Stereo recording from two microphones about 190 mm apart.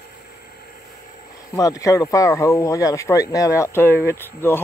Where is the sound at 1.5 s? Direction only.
20° left (ahead or behind).